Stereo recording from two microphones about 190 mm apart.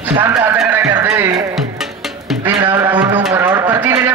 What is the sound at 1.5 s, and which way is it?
Music, centre (ahead or behind).